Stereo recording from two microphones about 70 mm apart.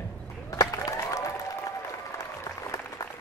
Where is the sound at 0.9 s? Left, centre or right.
Left.